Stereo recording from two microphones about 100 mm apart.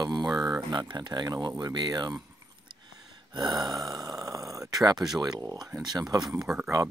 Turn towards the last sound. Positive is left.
turn(degrees=-5)  # may be behind; listen again after turning